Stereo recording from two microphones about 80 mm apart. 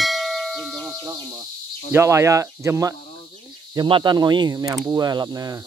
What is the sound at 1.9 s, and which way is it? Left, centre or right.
Speech, right.